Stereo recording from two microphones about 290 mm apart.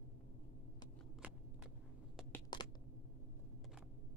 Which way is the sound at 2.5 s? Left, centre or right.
Centre.